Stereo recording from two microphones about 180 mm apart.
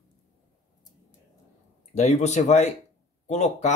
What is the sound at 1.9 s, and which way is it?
Speech, 40° left (ahead or behind).